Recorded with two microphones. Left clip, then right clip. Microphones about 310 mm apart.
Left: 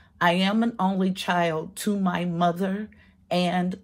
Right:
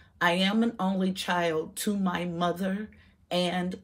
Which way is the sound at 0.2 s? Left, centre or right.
Left.